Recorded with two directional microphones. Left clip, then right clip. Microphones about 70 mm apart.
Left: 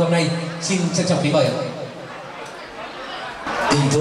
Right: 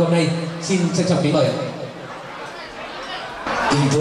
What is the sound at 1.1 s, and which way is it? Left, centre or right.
Speech, left.